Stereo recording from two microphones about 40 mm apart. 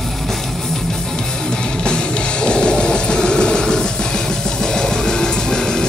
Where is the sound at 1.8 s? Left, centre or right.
Left.